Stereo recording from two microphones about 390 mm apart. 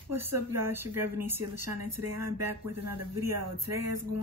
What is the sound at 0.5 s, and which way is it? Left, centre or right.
Speech, right.